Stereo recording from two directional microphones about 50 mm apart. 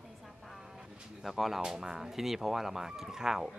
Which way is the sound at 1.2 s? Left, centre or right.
Centre.